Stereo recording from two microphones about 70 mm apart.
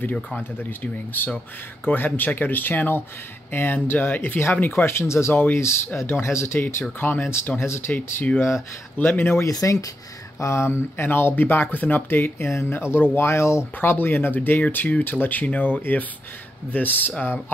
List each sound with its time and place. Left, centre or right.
0.0 s speech: centre
0.4 s speech: left
9.4 s speech: left
10.4 s speech: left